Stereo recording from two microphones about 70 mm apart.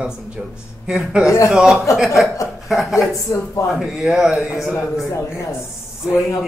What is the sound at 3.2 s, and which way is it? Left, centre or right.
Speech, left.